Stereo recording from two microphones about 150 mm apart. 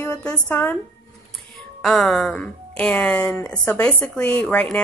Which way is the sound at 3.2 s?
20° left (ahead or behind).